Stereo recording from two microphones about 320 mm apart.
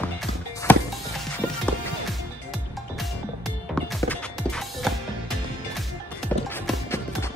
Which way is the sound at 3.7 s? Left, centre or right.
Centre.